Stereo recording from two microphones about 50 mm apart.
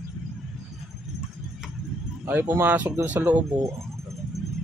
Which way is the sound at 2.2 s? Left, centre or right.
Right.